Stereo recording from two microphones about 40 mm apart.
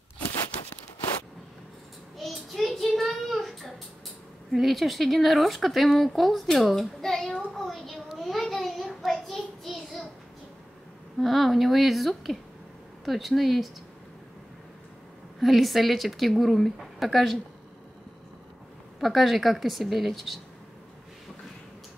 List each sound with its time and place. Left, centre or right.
2.1 s child singing: centre
4.5 s speech: centre
6.7 s a sound: centre
11.1 s speech: centre
15.4 s speech: centre
18.9 s speech: centre